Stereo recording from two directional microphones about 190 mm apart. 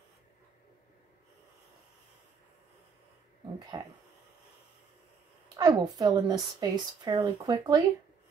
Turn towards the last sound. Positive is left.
turn(degrees=-20)  # may be behind; listen again after turning